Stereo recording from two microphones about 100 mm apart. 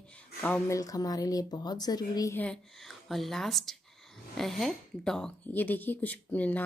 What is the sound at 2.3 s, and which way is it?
Speech, 15° left (ahead or behind).